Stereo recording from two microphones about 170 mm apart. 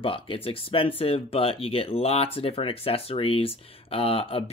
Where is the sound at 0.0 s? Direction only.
30° left (ahead or behind).